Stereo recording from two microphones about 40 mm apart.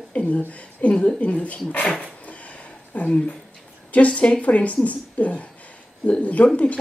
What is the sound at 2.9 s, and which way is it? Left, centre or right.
Speech, left.